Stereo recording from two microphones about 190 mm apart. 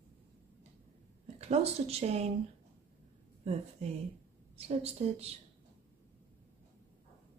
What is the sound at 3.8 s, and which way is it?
Speech, 35° right (ahead or behind).